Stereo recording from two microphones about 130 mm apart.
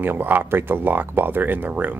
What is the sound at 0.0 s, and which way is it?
Speech, 15° right (ahead or behind).